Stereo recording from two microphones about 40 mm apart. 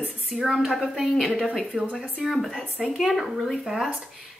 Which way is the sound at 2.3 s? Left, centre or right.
Centre.